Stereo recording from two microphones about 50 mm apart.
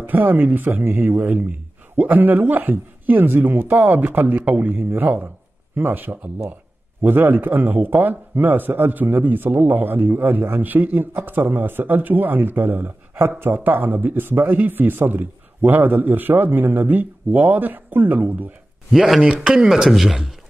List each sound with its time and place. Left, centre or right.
0.0 s speech: right
18.9 s speech: centre
19.2 s speech: centre